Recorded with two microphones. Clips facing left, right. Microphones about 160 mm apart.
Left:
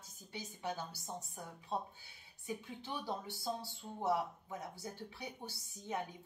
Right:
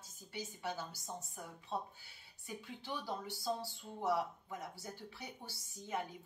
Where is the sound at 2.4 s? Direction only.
20° left (ahead or behind).